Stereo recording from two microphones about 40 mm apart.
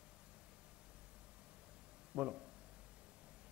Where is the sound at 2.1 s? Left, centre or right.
Centre.